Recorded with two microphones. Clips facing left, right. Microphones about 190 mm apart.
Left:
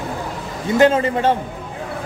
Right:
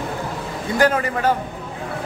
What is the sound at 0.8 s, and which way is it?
Speech, 25° left (ahead or behind).